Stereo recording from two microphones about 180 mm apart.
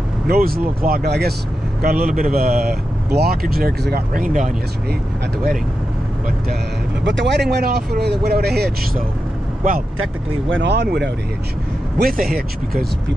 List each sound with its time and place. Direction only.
0.3 s speech: 55° right (ahead or behind)
7.1 s speech: 80° right; by 9.8 s 55° right (ahead or behind)
10.5 s speech: 70° right (ahead or behind)
12.0 s speech: 55° right (ahead or behind)